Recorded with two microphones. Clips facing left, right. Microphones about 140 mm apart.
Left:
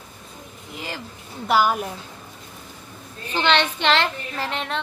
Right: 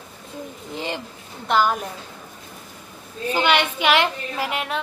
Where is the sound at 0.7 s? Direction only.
25° right (ahead or behind).